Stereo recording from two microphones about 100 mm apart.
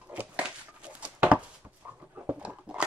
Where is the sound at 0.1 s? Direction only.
15° right (ahead or behind).